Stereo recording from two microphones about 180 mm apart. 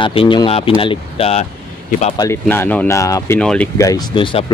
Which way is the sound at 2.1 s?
15° left (ahead or behind).